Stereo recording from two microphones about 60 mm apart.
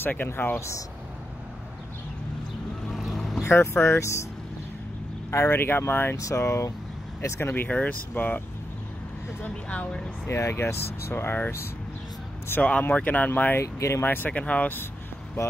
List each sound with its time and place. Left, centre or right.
0.0 s speech: left
0.6 s speech: left
2.9 s vehicle: centre
3.4 s speech: left
5.3 s speech: left
6.2 s speech: left
7.3 s speech: left
9.4 s speech: left
10.2 s speech: left
12.8 s speech: left
13.6 s speech: left
14.0 s speech: left
14.3 s speech: left